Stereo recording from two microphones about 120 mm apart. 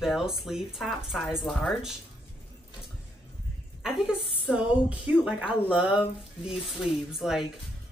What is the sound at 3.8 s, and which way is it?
A woman's voice, 5° right (ahead or behind).